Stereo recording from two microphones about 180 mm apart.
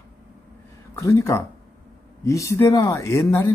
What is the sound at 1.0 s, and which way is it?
Speech, 15° left (ahead or behind).